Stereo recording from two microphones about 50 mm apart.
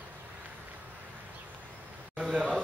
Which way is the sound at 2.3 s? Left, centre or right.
Right.